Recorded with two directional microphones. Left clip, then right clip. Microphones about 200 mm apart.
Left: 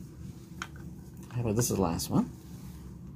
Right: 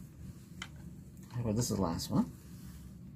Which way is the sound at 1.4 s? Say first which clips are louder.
Left 6 dB; 25° left (ahead or behind).